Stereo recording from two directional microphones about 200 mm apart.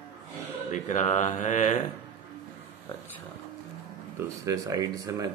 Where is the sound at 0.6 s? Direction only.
40° left (ahead or behind).